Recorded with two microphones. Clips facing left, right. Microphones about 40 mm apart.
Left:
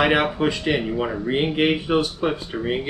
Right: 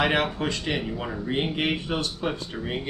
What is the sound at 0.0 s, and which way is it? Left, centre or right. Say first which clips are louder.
A man's voice: left 5 dB; centre.